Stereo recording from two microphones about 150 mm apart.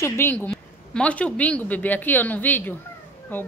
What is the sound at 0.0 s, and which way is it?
Speech, 15° left (ahead or behind).